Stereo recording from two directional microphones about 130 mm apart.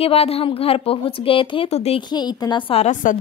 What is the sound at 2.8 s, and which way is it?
Speech, 90° left.